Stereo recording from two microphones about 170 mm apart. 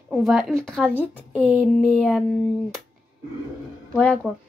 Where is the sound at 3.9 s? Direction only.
5° left (ahead or behind).